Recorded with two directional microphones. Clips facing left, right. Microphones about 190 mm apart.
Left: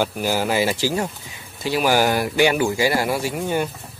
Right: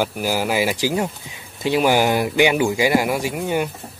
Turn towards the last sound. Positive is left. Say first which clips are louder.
# right 1 dB
turn(degrees=-10)  # may be behind; listen again after turning